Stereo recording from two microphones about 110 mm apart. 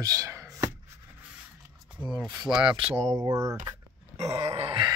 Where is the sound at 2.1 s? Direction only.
40° right (ahead or behind).